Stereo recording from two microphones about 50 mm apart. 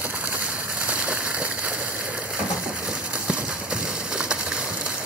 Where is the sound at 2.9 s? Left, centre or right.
Centre.